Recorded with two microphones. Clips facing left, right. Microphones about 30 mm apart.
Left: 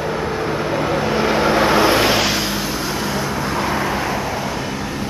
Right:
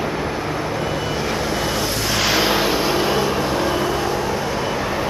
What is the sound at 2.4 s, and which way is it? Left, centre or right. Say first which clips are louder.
Vehicle: right 4 dB; right.